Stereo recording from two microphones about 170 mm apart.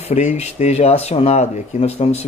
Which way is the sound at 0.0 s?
40° left (ahead or behind).